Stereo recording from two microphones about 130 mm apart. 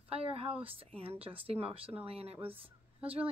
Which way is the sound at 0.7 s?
45° right (ahead or behind).